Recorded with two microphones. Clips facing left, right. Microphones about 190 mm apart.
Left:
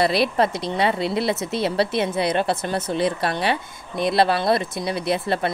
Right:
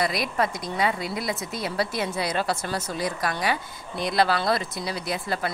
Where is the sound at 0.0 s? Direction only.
30° left (ahead or behind).